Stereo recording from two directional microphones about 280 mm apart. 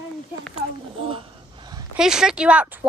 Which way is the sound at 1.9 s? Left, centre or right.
Centre.